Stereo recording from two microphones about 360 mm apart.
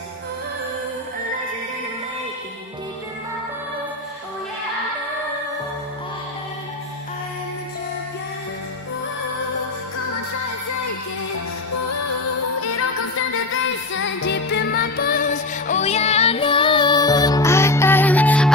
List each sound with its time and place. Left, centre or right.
11.3 s music: left
13.9 s music: left; by 18.5 s centre